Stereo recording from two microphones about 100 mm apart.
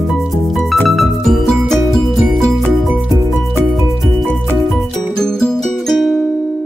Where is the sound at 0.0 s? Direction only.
Centre (ahead or behind).